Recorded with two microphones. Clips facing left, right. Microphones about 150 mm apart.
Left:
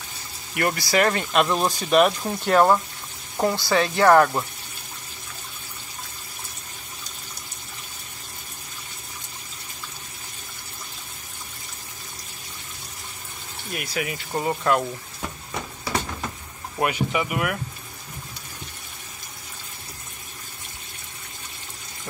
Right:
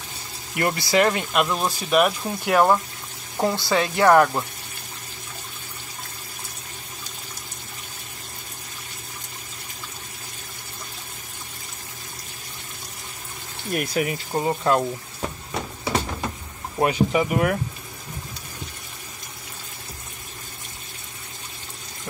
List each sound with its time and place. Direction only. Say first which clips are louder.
0.6 s speech: right 1 dB; 20° right (ahead or behind)
13.7 s speech: right 5 dB; 45° right (ahead or behind)
14.3 s speech: right 1 dB; 15° right (ahead or behind)
15.8 s a sound: right 3 dB; 20° right (ahead or behind)
16.8 s speech: right 4 dB; 35° right (ahead or behind)